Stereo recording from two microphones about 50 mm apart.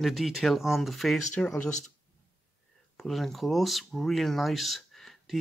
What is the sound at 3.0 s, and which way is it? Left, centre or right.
Speech, centre.